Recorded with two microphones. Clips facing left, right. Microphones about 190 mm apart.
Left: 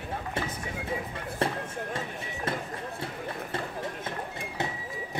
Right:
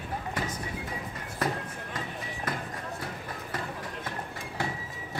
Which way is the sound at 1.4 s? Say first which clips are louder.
Left 1 dB; 30° left (ahead or behind).